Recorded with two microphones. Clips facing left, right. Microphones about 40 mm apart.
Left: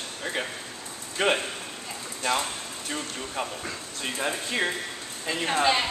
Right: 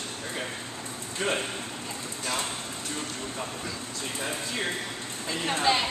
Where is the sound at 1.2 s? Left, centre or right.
Left.